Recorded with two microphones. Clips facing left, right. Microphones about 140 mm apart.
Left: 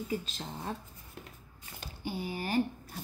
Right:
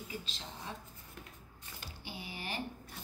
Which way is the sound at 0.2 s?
45° left (ahead or behind).